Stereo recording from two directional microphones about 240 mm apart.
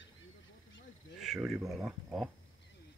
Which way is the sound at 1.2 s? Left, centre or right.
Centre.